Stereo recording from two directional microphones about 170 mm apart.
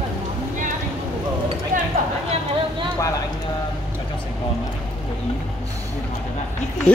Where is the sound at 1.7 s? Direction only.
55° right (ahead or behind).